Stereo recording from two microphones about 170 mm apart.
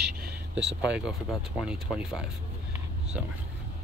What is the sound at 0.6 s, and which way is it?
Speech, 90° right.